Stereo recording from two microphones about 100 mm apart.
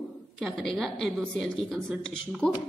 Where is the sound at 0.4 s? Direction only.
Centre (ahead or behind).